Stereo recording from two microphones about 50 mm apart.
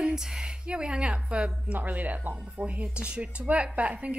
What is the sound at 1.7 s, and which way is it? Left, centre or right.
A woman's voice, right.